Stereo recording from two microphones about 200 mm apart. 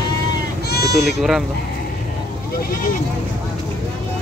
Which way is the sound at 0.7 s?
55° left (ahead or behind).